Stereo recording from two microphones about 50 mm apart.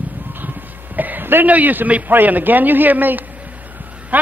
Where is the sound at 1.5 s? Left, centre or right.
Right.